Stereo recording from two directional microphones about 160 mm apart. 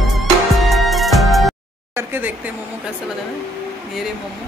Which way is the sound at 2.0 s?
10° right (ahead or behind).